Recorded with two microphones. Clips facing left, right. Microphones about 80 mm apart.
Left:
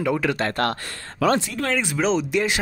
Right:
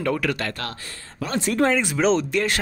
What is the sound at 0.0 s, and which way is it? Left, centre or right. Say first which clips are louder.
Speech: left 2 dB; centre.